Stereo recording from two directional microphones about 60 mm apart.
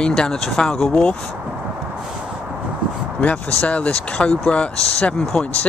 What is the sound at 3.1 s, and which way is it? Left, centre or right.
Speech, left.